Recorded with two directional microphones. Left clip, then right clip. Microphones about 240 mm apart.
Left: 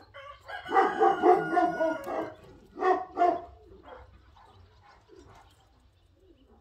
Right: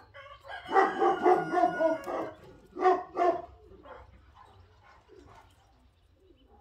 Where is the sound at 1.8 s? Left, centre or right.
Right.